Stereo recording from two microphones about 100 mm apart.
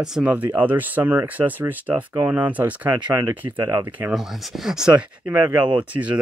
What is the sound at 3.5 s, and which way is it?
Speech, 40° right (ahead or behind).